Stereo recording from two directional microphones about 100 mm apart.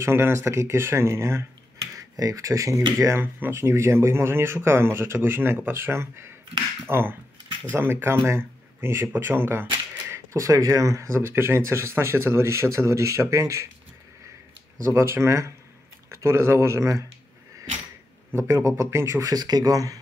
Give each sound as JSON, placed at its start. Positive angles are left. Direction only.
{"t": 0.0, "sound": "speech", "side_deg": -25}
{"t": 14.8, "sound": "speech", "side_deg": -25}
{"t": 18.3, "sound": "speech", "side_deg": -30}
{"t": 19.3, "sound": "speech", "side_deg": -40}